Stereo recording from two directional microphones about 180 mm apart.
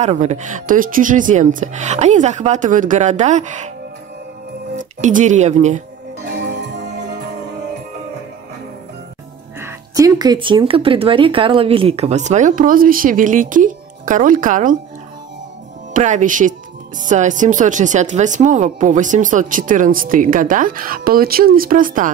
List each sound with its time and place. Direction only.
0.0 s speech: 40° right (ahead or behind)
4.7 s speech: 45° right (ahead or behind)
9.6 s speech: 15° right (ahead or behind); by 14.8 s 45° right (ahead or behind)
15.9 s speech: 45° right (ahead or behind)